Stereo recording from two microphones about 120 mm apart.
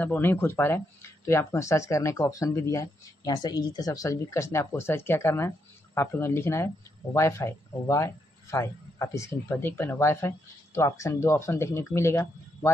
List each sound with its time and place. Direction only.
0.0 s speech: 15° left (ahead or behind)